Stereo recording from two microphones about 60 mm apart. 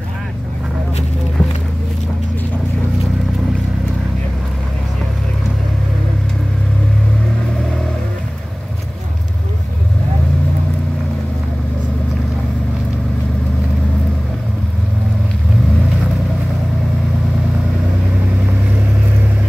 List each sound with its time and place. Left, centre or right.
1.4 s music: centre